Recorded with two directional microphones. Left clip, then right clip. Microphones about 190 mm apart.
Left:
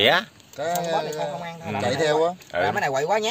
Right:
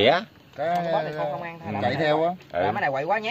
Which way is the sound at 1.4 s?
55° left (ahead or behind).